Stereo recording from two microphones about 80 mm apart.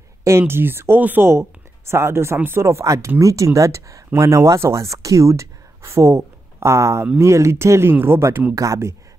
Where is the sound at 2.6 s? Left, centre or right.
Right.